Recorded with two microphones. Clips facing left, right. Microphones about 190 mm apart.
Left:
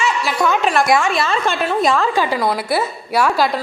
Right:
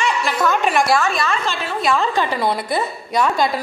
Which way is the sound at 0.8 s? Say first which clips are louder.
Left 2 dB; 25° left (ahead or behind).